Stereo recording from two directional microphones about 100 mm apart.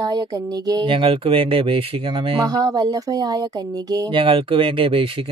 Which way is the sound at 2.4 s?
40° right (ahead or behind).